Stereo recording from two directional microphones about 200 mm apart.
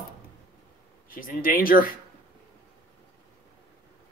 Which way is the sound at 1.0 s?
45° left (ahead or behind).